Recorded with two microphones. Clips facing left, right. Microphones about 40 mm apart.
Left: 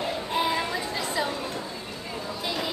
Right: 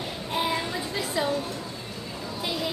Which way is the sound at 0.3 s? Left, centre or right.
Centre.